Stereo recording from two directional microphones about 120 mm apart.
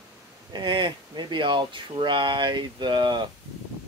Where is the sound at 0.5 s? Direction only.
40° right (ahead or behind).